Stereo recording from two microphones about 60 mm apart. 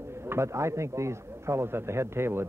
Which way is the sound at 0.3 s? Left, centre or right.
Right.